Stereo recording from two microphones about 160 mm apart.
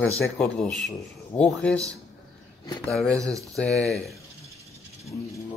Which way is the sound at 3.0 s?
20° right (ahead or behind).